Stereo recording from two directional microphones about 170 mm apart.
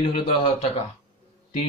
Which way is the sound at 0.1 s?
35° left (ahead or behind).